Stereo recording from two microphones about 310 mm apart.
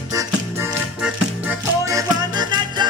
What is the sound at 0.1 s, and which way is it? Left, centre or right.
Music, centre.